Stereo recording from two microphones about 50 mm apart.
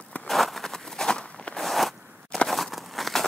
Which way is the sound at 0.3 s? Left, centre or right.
Centre.